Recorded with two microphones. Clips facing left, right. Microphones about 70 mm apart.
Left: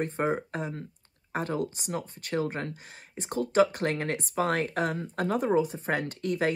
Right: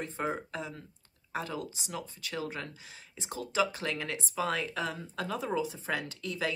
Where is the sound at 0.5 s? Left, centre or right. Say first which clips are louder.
Left 5 dB; left.